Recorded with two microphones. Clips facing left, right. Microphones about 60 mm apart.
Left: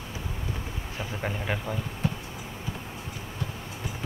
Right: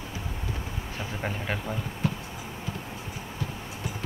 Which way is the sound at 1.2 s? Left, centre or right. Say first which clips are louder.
Left 1 dB; centre.